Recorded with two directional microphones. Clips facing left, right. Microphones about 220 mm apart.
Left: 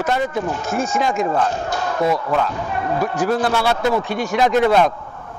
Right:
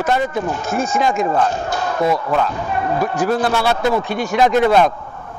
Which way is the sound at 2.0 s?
35° right (ahead or behind).